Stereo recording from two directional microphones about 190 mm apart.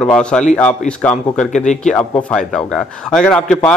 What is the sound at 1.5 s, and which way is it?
Speech, 40° left (ahead or behind).